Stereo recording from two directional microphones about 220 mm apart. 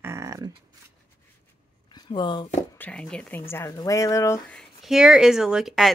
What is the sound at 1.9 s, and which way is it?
Speech, 20° left (ahead or behind).